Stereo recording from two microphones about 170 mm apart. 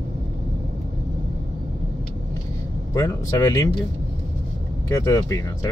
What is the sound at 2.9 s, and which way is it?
Speech, 20° left (ahead or behind).